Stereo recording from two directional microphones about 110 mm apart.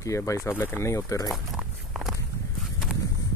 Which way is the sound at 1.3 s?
5° right (ahead or behind).